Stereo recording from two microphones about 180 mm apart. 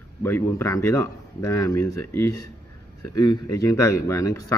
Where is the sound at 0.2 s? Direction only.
15° left (ahead or behind).